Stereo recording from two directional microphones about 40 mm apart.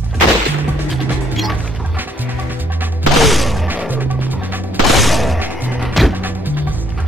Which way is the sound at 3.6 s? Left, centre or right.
Right.